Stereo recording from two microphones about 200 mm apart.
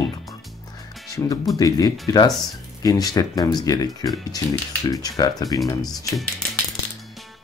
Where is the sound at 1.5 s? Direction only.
20° left (ahead or behind).